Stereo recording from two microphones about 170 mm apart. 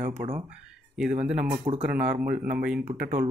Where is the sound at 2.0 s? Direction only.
10° right (ahead or behind).